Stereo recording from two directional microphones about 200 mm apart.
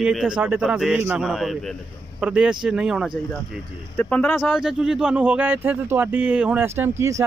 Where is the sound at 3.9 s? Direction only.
5° left (ahead or behind).